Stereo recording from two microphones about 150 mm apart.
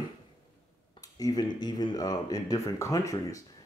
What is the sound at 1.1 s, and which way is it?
Speech, 25° left (ahead or behind).